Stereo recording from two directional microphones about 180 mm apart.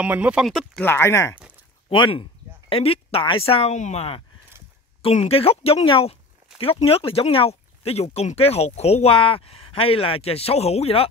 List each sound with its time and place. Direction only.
0.0 s speech: 10° right (ahead or behind); by 1.4 s 15° left (ahead or behind)
1.9 s speech: 30° left (ahead or behind)